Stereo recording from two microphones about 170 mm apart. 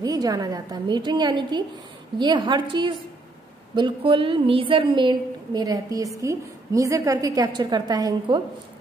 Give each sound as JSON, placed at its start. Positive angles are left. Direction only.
{"t": 0.0, "sound": "a woman's voice", "side_deg": -20}